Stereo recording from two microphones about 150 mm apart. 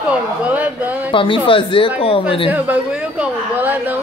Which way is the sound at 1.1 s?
35° left (ahead or behind).